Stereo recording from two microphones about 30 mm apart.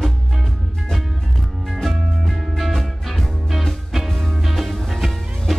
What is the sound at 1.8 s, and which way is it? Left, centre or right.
Music, centre.